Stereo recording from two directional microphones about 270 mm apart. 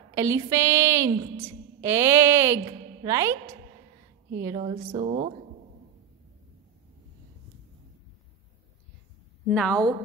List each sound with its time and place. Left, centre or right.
0.1 s a woman's voice: centre
9.5 s a woman's voice: centre